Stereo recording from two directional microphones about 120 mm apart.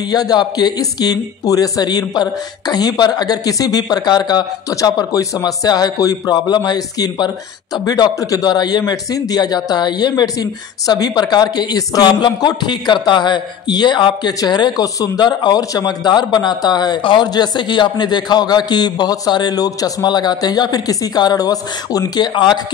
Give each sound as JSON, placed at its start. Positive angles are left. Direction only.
{"t": 0.1, "sound": "a man's voice", "side_deg": 35}